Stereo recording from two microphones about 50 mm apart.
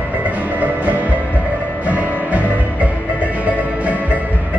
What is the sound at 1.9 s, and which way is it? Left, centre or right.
Music, right.